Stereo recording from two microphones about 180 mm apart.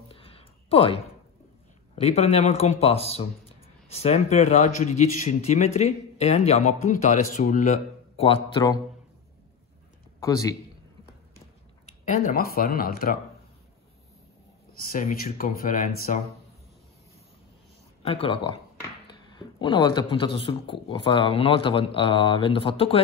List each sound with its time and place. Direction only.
0.1 s a sound: 30° left (ahead or behind)
2.0 s a man's voice: 35° left (ahead or behind)
10.2 s a man's voice: 20° left (ahead or behind)
11.8 s a sound: 40° left (ahead or behind)
12.4 s speech: 55° left (ahead or behind)
14.9 s speech: 50° left (ahead or behind)
18.0 s a man's voice: 30° left (ahead or behind)